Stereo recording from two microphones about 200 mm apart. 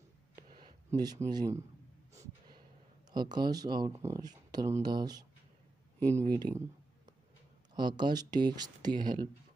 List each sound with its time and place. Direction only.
0.5 s a sound: 25° right (ahead or behind)
1.3 s speech: 20° right (ahead or behind)
3.1 s speech: 20° right (ahead or behind)
7.7 s speech: 20° right (ahead or behind)